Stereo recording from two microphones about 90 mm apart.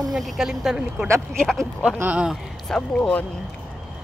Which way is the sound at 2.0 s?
15° right (ahead or behind).